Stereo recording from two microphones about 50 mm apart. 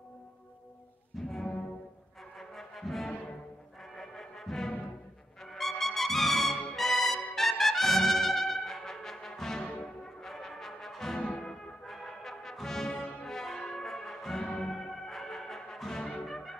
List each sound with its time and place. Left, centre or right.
1.1 s music: centre
2.3 s music: centre
7.3 s trumpet: centre
10.2 s brass instrument: centre
11.1 s brass instrument: centre
11.8 s brass instrument: centre
13.7 s music: centre
16.3 s brass instrument: centre